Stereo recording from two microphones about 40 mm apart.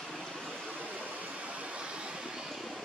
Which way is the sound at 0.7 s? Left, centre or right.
Right.